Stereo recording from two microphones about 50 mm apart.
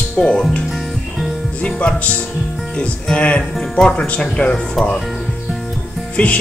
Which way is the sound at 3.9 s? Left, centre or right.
Left.